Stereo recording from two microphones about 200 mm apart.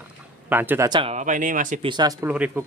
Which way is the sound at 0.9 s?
25° right (ahead or behind).